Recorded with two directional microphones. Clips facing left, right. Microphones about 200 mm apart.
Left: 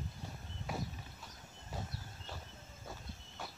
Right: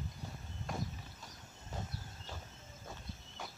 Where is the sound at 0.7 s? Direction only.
5° left (ahead or behind).